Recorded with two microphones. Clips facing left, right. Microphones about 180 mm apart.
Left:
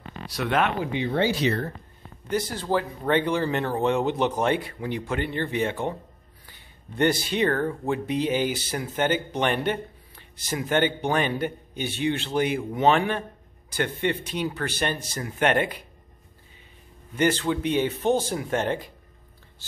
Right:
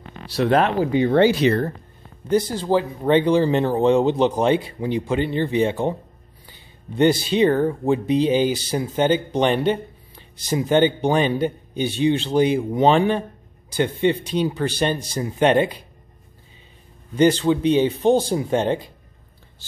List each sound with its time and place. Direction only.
0.3 s speech: 35° right (ahead or behind)
1.0 s speech: 65° right (ahead or behind)
2.3 s speech: 25° right (ahead or behind)
7.2 s speech: 25° right (ahead or behind)
7.4 s a man's voice: 15° right (ahead or behind)
7.8 s speech: 25° right (ahead or behind)
13.7 s a man's voice: 15° right (ahead or behind)
14.2 s speech: 30° right (ahead or behind)
17.4 s speech: 25° right (ahead or behind)